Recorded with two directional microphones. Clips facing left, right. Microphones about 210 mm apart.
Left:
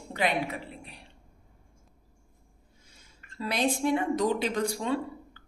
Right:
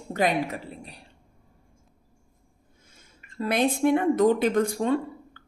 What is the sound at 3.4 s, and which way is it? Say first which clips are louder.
A woman's voice: right 5 dB; 55° right (ahead or behind).